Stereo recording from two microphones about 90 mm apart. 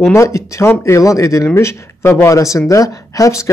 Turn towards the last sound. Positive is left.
turn(degrees=35)  # may be behind; listen again after turning